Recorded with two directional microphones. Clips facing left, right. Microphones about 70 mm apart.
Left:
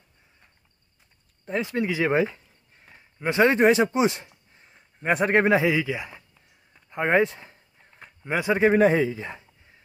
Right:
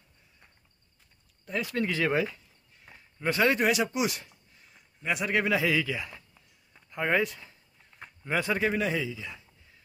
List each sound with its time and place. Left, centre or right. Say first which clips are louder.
1.4 s speech: left 4 dB; left
2.1 s a sound: left 5 dB; left
3.0 s speech: left 5 dB; left
6.9 s a sound: left 6 dB; left
8.2 s speech: left 6 dB; centre
8.7 s speech: left 10 dB; left